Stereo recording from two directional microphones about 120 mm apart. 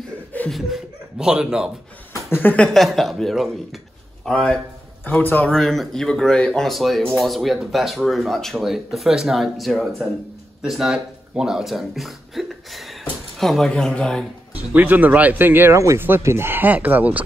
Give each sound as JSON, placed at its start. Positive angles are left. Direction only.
{"t": 0.5, "sound": "speech", "side_deg": 0}
{"t": 2.3, "sound": "speech", "side_deg": 15}
{"t": 5.0, "sound": "a man's voice", "side_deg": 15}
{"t": 5.5, "sound": "speech", "side_deg": 5}
{"t": 14.5, "sound": "speech", "side_deg": -15}